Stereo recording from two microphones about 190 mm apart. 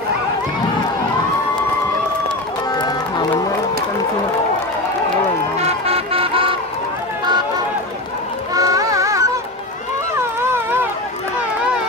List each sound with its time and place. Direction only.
2.7 s music: 20° left (ahead or behind)
5.6 s music: 30° right (ahead or behind)
8.5 s music: 20° right (ahead or behind)
10.5 s run: 10° right (ahead or behind)